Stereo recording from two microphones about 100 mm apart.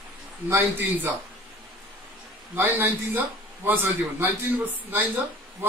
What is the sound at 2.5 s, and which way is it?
A man's voice, 20° right (ahead or behind).